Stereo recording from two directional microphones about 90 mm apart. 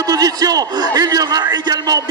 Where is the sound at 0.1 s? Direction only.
45° right (ahead or behind).